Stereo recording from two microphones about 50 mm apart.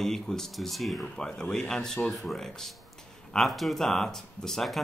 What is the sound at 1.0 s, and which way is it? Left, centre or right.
Speech, centre.